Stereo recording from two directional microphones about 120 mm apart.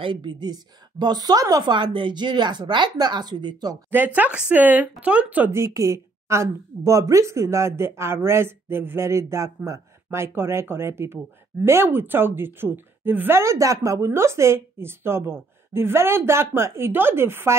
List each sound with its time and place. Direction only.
0.0 s a woman's voice: 40° right (ahead or behind)
3.9 s a woman's voice: 15° right (ahead or behind)